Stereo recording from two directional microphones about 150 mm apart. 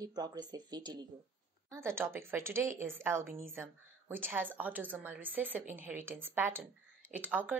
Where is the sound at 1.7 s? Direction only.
15° right (ahead or behind).